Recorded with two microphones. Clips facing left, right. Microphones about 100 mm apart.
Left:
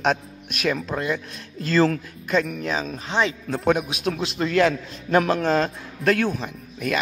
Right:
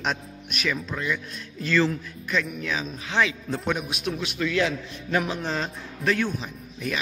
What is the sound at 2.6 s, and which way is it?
Speech, 35° left (ahead or behind).